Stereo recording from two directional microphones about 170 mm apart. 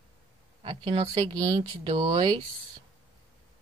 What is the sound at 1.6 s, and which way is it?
Speech, 30° right (ahead or behind).